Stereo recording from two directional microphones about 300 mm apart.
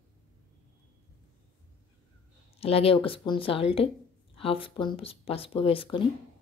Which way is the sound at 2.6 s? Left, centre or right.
Centre.